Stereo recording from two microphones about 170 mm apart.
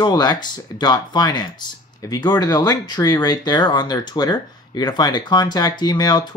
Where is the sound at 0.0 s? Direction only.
25° left (ahead or behind).